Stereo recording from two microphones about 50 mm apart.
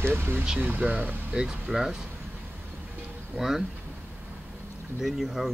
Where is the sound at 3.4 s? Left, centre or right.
Centre.